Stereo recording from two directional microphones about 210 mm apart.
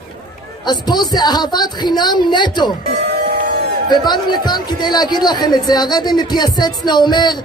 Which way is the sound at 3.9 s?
20° left (ahead or behind).